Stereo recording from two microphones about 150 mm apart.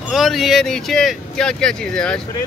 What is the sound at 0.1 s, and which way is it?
Speech, centre (ahead or behind).